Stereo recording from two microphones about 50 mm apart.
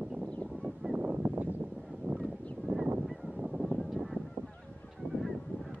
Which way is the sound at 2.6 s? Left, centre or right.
Centre.